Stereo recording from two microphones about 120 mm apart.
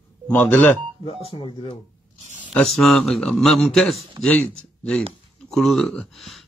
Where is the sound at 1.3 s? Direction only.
50° left (ahead or behind).